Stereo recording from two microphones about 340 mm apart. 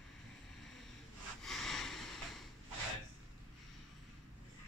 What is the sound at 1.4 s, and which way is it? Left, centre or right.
Snort, centre.